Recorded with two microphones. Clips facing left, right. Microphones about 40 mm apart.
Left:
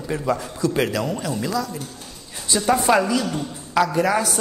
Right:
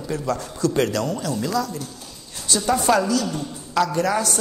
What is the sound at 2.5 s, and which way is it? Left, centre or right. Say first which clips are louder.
A man's voice: left 1 dB; centre.